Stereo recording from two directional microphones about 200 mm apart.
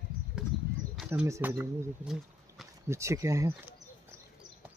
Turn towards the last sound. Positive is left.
turn(degrees=-15)  # may be behind; listen again after turning